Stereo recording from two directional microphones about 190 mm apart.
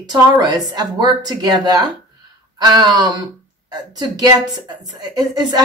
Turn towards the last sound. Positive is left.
turn(degrees=-20)  # may be behind; listen again after turning